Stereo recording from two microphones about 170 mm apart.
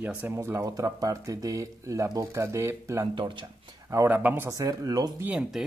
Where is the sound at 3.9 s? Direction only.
15° right (ahead or behind).